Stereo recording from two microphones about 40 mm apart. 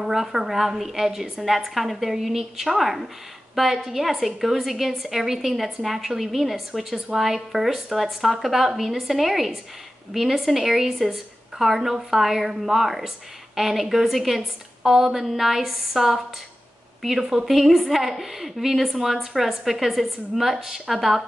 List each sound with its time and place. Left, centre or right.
0.0 s a woman's voice: centre
15.1 s a woman's voice: centre
17.2 s a woman's voice: centre
17.5 s a woman's voice: centre